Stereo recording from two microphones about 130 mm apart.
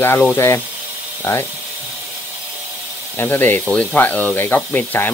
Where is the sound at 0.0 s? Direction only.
15° left (ahead or behind).